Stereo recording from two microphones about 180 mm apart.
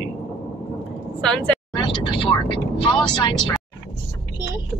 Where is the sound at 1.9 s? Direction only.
30° left (ahead or behind).